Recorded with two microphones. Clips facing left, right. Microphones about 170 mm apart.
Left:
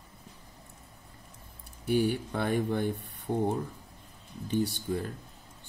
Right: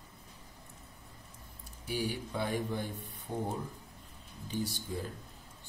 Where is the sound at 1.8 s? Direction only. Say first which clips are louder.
Left 9 dB; 60° left (ahead or behind).